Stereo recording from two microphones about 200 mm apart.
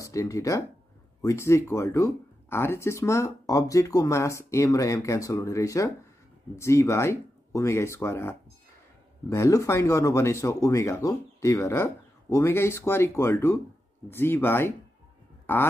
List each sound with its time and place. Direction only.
0.0 s speech: 15° left (ahead or behind)